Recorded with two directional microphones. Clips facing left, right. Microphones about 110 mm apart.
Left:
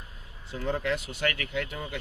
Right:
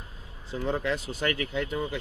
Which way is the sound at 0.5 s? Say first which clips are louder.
Right 1 dB; 35° right (ahead or behind).